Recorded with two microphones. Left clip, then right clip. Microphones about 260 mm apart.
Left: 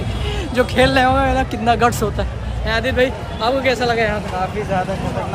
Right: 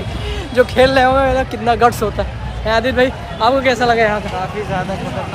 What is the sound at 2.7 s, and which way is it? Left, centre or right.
Speech, centre.